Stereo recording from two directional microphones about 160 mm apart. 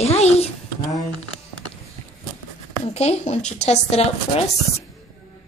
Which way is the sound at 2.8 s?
40° left (ahead or behind).